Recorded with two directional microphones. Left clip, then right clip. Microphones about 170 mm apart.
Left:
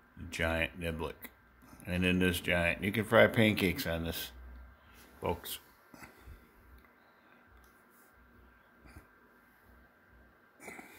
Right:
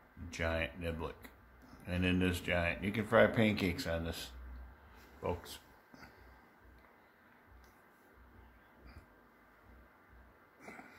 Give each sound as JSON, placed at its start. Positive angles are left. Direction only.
{"t": 0.3, "sound": "speech", "side_deg": 45}
{"t": 5.2, "sound": "oink", "side_deg": 55}
{"t": 10.6, "sound": "a sound", "side_deg": 45}